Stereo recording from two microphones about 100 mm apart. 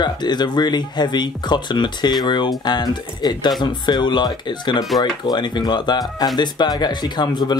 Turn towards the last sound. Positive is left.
turn(degrees=45)  # may be behind; listen again after turning